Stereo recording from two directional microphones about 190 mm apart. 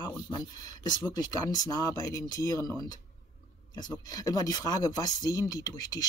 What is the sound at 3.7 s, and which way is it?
Speech, 20° left (ahead or behind).